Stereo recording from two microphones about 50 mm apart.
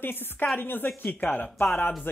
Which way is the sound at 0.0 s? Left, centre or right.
Left.